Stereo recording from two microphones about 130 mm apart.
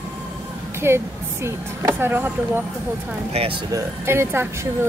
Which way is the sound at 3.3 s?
50° right (ahead or behind).